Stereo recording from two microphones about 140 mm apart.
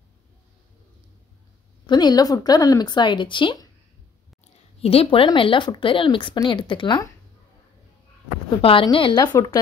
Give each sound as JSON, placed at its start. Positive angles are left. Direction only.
{"t": 1.9, "sound": "speech", "side_deg": 30}
{"t": 4.8, "sound": "speech", "side_deg": 40}
{"t": 8.5, "sound": "speech", "side_deg": 40}